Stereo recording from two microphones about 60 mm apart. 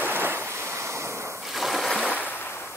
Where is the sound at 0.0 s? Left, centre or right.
Right.